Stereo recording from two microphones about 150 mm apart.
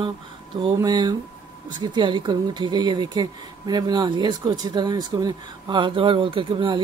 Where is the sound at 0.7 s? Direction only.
30° right (ahead or behind).